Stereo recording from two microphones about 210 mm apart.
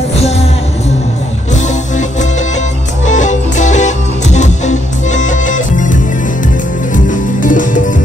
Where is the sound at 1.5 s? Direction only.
35° left (ahead or behind).